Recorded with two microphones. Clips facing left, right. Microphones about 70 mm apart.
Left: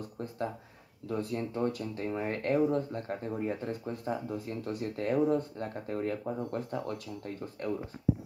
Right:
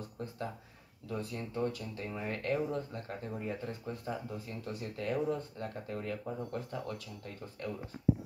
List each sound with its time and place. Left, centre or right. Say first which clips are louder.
1.0 s speech: left 6 dB; left